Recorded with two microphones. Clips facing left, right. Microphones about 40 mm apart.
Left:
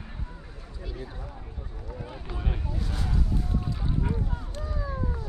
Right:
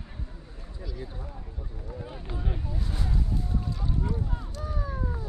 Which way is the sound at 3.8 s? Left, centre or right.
Centre.